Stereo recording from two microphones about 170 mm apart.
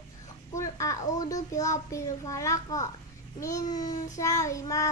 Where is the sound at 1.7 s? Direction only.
20° left (ahead or behind).